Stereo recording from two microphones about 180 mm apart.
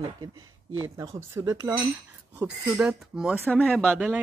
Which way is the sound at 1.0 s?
15° right (ahead or behind).